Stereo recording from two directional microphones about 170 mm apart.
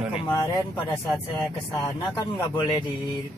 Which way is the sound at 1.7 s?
20° left (ahead or behind).